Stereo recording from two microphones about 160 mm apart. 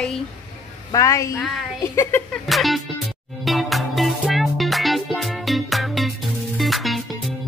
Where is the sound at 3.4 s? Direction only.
Centre (ahead or behind).